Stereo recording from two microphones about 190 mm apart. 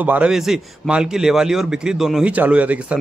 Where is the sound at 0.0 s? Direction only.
10° right (ahead or behind).